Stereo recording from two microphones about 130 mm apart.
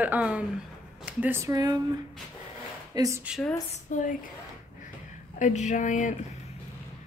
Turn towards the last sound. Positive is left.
turn(degrees=75)  # may be behind; listen again after turning